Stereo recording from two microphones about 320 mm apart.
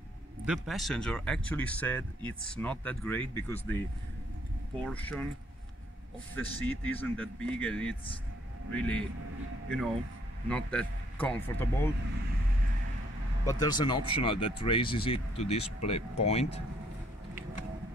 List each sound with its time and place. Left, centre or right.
0.5 s speech: centre
4.8 s speech: centre
6.3 s speech: centre
10.5 s speech: centre
13.5 s speech: centre